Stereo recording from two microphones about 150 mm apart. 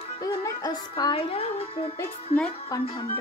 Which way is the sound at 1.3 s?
40° left (ahead or behind).